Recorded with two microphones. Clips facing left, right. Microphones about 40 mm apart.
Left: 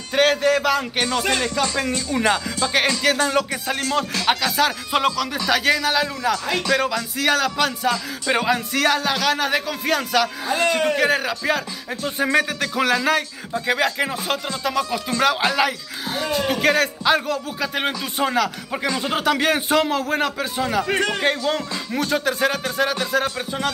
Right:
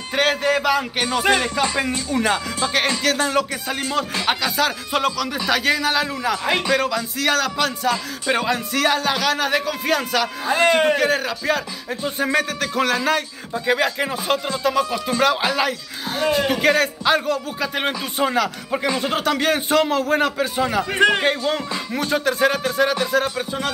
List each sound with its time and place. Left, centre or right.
0.1 s speech: centre
2.1 s speech: centre
6.3 s speech: right
6.7 s speech: centre
10.7 s speech: right
11.0 s speech: centre
21.0 s speech: right
21.4 s speech: centre